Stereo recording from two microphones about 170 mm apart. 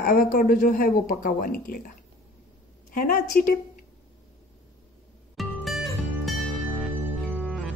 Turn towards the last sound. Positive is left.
turn(degrees=5)  # may be behind; listen again after turning